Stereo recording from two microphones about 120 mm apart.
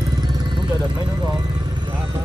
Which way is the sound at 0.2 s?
35° right (ahead or behind).